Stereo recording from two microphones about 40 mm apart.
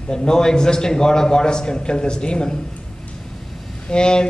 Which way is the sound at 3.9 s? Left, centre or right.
Left.